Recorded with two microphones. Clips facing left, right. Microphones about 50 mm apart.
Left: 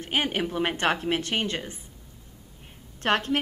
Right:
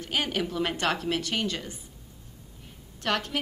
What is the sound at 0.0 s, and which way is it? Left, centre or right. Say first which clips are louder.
Speech: left 2 dB; left.